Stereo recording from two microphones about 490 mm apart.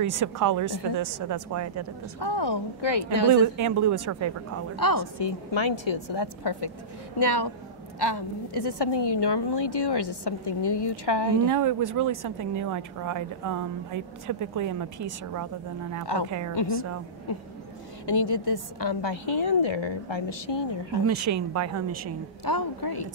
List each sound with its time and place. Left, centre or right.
0.0 s a woman's voice: right
2.1 s a woman's voice: left
3.5 s a woman's voice: right
4.7 s a woman's voice: left
5.2 s a woman's voice: left
11.4 s a woman's voice: right
18.0 s a woman's voice: left
21.1 s a woman's voice: right
22.4 s a woman's voice: left